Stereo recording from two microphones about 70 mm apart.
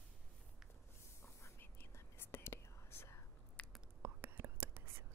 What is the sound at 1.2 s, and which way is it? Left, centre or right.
Whispering, left.